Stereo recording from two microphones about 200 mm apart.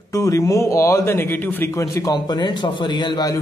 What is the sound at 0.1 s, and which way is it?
A man's voice, 15° left (ahead or behind).